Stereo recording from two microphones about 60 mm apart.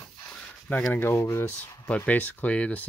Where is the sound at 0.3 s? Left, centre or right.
Centre.